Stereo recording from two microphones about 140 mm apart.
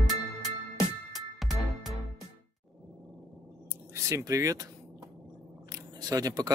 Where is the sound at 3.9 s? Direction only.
20° right (ahead or behind).